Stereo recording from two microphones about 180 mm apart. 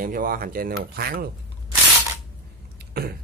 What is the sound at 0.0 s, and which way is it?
Speech, 50° right (ahead or behind).